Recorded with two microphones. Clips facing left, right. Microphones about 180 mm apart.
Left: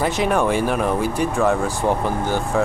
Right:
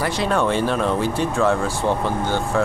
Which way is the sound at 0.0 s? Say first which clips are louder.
Left 2 dB; 15° left (ahead or behind).